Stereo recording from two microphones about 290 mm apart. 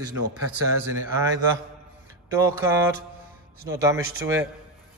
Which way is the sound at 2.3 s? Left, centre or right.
Centre.